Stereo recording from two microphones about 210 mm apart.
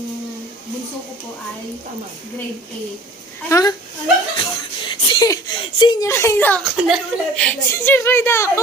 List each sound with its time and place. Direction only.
3.4 s a woman's voice: 15° left (ahead or behind)